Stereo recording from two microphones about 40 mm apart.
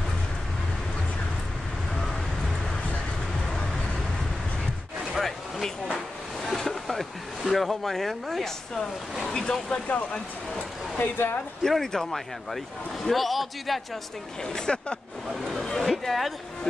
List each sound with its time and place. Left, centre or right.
5.1 s a sound: centre
9.3 s speech: centre
9.7 s speech: left
11.0 s speech: left
11.6 s speech: centre
13.0 s a man's voice: centre
14.4 s speech: left
15.4 s a sound: centre
15.8 s a man's voice: centre